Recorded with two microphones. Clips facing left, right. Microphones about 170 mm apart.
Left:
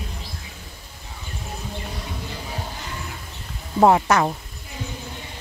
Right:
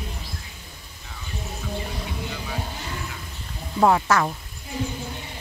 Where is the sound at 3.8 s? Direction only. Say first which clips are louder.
Left 3 dB; 25° left (ahead or behind).